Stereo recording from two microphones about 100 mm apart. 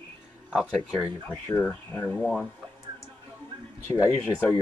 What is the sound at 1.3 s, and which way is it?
Speech, 30° left (ahead or behind).